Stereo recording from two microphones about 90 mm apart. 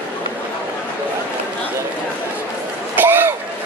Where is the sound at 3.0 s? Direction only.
20° right (ahead or behind).